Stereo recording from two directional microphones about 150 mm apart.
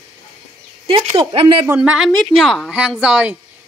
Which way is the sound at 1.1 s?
35° right (ahead or behind).